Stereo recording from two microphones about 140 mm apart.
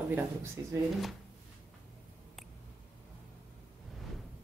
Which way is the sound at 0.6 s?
25° right (ahead or behind).